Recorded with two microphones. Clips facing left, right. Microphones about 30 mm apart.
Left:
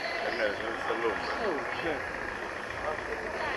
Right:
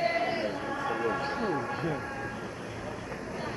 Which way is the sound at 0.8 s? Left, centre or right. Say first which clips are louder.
Even; centre.